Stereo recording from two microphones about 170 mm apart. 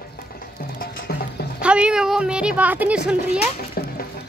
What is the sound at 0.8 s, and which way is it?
Music, 60° left (ahead or behind).